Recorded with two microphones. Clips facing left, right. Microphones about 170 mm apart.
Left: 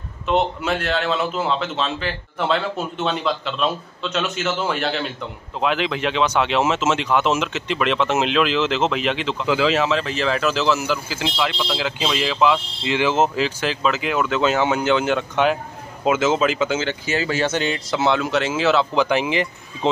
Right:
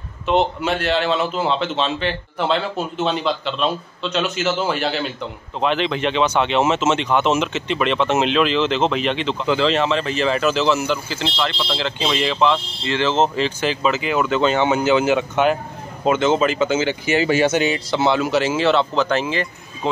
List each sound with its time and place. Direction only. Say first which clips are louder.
0.3 s speech: right 2 dB; centre (ahead or behind)
17.0 s speech: right 5 dB; 15° right (ahead or behind); by 18.9 s centre (ahead or behind)
18.9 s speech: left 1 dB; 15° left (ahead or behind)